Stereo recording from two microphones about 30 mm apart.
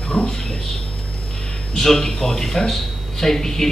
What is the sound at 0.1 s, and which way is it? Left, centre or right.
Speech, centre.